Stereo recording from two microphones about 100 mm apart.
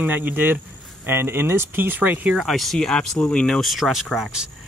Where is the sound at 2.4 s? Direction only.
Centre (ahead or behind).